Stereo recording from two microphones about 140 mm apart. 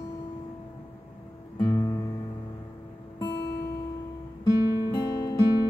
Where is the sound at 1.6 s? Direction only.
25° left (ahead or behind).